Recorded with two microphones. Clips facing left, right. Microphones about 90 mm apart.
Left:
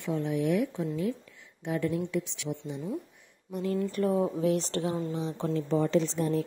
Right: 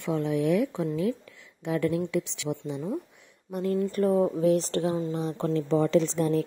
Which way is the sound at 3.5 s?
55° right (ahead or behind).